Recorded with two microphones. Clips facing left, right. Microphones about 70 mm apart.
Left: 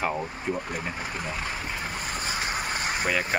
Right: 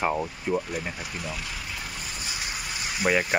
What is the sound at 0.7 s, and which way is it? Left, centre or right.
Speech, left.